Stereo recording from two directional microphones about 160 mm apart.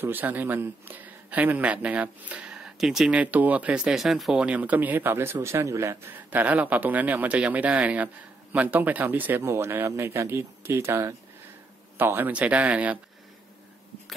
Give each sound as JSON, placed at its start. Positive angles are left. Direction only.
{"t": 0.0, "sound": "speech", "side_deg": -10}